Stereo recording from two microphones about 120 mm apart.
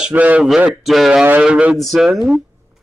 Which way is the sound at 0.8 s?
Centre (ahead or behind).